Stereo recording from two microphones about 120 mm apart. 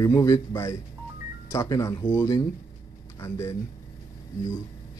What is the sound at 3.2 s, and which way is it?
Speech, 25° left (ahead or behind).